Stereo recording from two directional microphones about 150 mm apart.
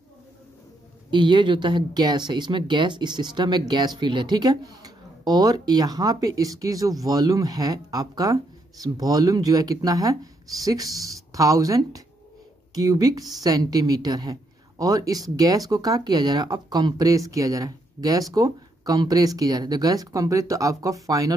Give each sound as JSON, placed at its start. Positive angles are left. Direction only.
{"t": 1.1, "sound": "speech", "side_deg": -30}